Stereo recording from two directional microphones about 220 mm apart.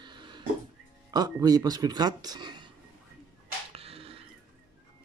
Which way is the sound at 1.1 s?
15° right (ahead or behind).